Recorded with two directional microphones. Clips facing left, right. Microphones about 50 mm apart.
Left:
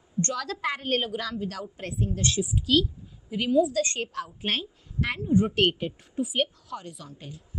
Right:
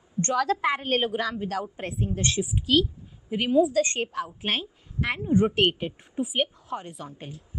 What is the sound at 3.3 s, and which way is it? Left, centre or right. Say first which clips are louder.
Speech: right 2 dB; right.